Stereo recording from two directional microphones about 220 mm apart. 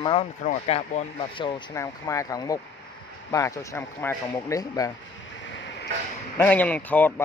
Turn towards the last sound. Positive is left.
turn(degrees=10)  # may be behind; listen again after turning